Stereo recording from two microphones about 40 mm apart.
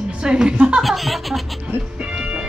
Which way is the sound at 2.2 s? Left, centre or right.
Right.